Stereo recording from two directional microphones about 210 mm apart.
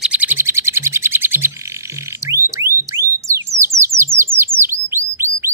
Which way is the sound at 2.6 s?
65° right (ahead or behind).